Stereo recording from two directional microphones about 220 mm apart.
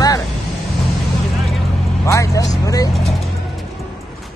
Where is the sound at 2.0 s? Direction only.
15° left (ahead or behind).